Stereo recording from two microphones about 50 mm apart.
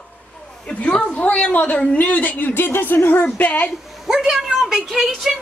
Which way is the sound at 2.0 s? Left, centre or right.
Left.